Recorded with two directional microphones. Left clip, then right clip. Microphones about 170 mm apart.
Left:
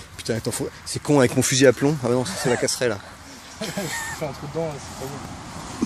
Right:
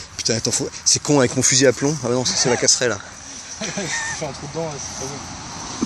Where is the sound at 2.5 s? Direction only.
5° left (ahead or behind).